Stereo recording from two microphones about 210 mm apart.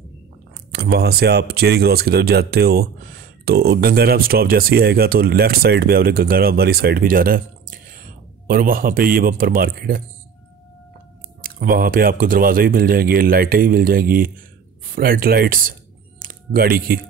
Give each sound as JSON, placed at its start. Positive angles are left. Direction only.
{"t": 0.7, "sound": "speech", "side_deg": -50}
{"t": 11.4, "sound": "speech", "side_deg": -45}